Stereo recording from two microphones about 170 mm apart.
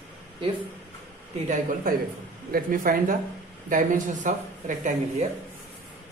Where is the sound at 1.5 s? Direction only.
50° right (ahead or behind).